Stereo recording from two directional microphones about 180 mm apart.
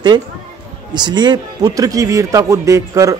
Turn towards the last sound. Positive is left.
turn(degrees=-15)  # may be behind; listen again after turning